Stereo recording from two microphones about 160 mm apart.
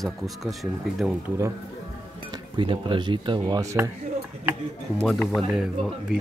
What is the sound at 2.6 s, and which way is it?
Speech, 30° right (ahead or behind).